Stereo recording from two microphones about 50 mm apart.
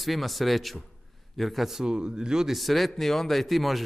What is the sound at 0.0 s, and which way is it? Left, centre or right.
A man's voice, centre.